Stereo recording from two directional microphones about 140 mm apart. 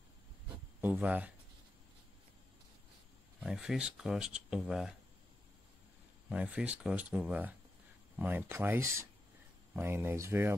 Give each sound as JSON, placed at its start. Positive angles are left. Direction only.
{"t": 0.7, "sound": "speech", "side_deg": -10}
{"t": 3.3, "sound": "speech", "side_deg": -5}
{"t": 6.2, "sound": "speech", "side_deg": -10}